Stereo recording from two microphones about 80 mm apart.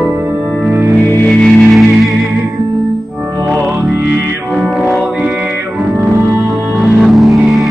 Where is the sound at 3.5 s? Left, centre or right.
Right.